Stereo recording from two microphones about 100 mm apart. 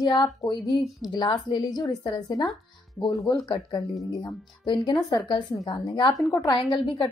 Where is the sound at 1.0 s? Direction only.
40° left (ahead or behind).